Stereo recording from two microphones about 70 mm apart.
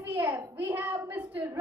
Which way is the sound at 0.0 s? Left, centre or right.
Right.